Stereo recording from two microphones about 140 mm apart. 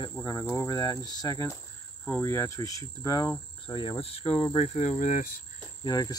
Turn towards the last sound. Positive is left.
turn(degrees=30)  # may be behind; listen again after turning